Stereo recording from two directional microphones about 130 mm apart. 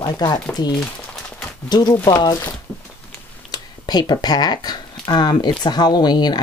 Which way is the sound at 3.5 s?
30° left (ahead or behind).